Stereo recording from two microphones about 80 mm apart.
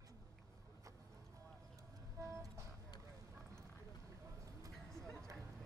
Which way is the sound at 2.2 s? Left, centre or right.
Right.